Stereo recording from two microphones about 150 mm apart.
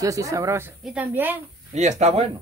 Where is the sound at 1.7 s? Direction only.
45° right (ahead or behind).